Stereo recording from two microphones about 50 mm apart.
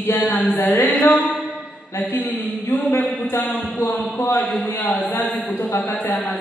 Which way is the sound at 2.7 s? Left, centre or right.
Left.